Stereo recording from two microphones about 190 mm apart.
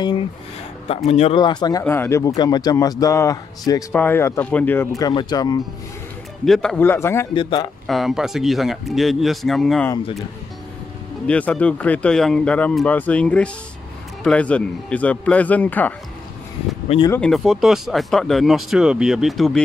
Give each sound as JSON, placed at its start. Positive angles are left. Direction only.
{"t": 0.8, "sound": "speech", "side_deg": 35}
{"t": 6.4, "sound": "speech", "side_deg": 0}
{"t": 7.3, "sound": "speech", "side_deg": 25}
{"t": 7.8, "sound": "speech", "side_deg": 0}
{"t": 11.2, "sound": "speech", "side_deg": 5}
{"t": 17.1, "sound": "speech", "side_deg": 5}